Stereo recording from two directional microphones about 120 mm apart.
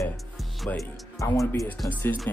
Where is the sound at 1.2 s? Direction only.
25° left (ahead or behind).